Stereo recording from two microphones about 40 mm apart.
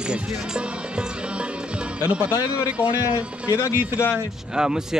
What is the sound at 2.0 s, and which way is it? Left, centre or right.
Speech, right.